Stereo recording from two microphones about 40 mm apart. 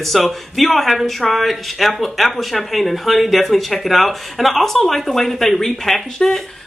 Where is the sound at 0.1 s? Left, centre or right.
Centre.